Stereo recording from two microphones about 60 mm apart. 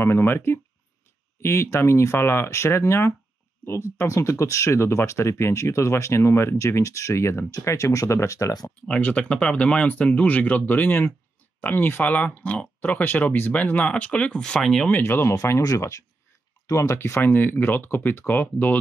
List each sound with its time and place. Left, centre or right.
0.0 s speech: left
8.8 s speech: centre
12.0 s speech: left; by 14.9 s centre
15.0 s speech: left
15.8 s speech: left
17.2 s speech: left